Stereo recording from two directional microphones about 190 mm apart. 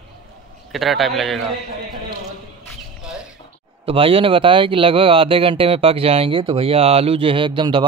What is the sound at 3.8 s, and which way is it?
Speech, 30° right (ahead or behind).